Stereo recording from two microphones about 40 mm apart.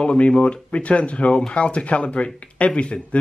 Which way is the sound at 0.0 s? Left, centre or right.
Left.